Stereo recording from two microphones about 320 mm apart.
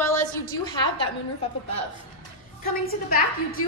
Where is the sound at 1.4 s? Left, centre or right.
Centre.